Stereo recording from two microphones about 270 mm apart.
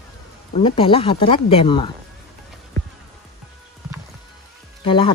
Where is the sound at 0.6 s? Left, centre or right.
Left.